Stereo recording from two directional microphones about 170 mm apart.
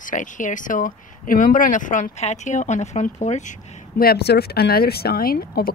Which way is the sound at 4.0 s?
65° left (ahead or behind).